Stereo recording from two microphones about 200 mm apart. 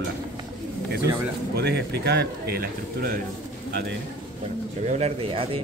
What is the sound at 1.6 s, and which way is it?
Speech, 55° right (ahead or behind).